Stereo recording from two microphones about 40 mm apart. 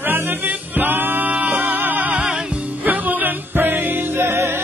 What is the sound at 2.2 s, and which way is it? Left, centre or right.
Music, right.